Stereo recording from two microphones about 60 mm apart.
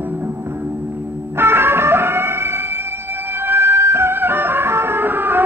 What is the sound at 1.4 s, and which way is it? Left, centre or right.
Music, right.